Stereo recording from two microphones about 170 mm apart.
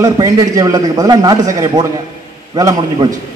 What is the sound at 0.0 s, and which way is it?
A man's voice, 20° right (ahead or behind).